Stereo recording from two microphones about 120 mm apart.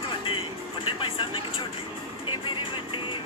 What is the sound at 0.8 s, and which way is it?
Speech, 45° left (ahead or behind).